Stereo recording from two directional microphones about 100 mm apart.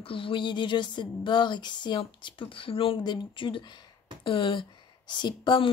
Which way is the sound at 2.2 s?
60° left (ahead or behind).